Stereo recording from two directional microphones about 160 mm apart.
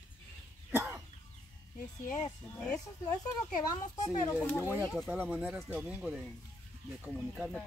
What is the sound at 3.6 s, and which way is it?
Speech, 25° left (ahead or behind).